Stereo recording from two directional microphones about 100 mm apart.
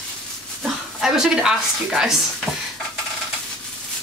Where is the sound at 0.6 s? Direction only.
5° right (ahead or behind).